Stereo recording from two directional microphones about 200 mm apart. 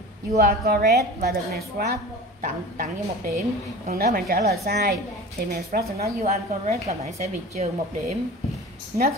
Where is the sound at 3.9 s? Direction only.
45° right (ahead or behind).